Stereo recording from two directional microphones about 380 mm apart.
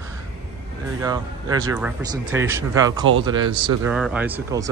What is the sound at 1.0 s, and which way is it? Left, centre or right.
Speech, centre.